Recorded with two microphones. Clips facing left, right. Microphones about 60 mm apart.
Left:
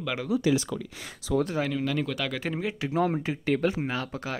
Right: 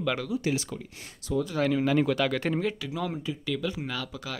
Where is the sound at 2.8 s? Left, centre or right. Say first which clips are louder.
Left 6 dB; left.